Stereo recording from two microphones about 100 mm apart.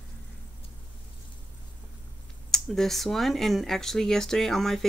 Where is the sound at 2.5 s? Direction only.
5° left (ahead or behind).